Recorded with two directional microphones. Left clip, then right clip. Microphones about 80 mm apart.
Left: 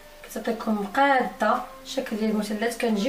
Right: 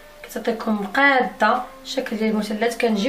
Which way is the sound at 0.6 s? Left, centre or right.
Right.